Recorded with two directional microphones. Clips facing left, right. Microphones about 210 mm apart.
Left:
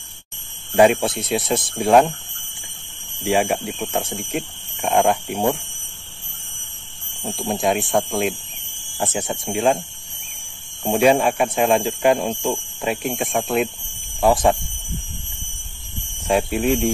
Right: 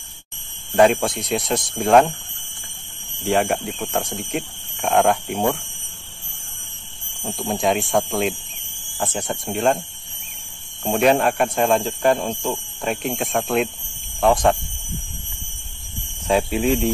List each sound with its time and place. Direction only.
0.7 s speech: 5° left (ahead or behind)
3.3 s speech: 5° left (ahead or behind)
7.3 s speech: centre (ahead or behind)
10.8 s speech: 5° left (ahead or behind)
16.3 s speech: centre (ahead or behind)